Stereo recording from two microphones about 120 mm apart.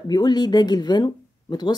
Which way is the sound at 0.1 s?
35° left (ahead or behind).